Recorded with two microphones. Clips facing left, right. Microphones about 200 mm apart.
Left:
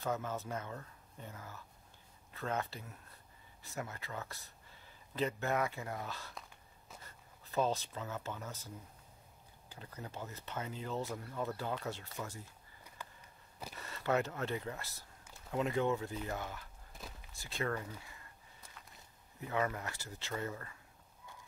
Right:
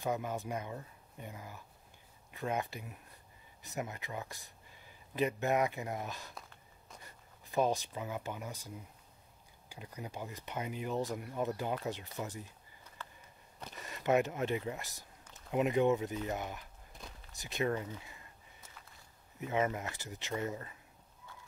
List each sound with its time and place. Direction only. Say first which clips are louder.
0.0 s speech: right 2 dB; 15° right (ahead or behind)
13.0 s a sound: right 1 dB; 15° left (ahead or behind)
13.7 s speech: right 4 dB; 15° right (ahead or behind)
19.4 s speech: right 3 dB; 20° right (ahead or behind)